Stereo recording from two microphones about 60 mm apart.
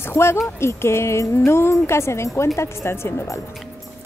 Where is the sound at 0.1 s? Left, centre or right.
Left.